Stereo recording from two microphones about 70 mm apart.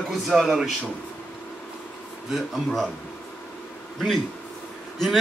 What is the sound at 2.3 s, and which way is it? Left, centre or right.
Speech, centre.